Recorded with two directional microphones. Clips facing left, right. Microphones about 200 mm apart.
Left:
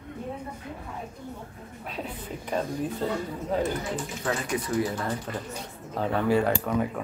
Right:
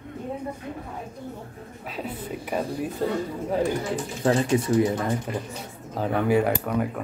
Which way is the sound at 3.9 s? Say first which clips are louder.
Right 7 dB; 30° right (ahead or behind).